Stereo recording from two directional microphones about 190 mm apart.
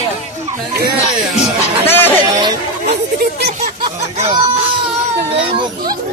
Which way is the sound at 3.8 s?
30° right (ahead or behind).